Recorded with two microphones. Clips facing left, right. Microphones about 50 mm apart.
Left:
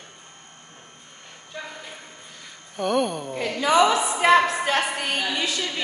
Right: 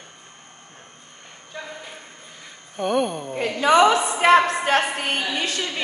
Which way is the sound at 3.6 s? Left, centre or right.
Right.